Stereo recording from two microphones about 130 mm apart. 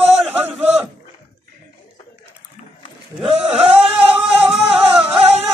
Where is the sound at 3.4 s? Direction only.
10° right (ahead or behind).